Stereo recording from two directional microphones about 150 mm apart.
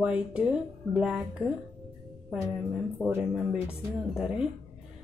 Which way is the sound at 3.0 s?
15° left (ahead or behind).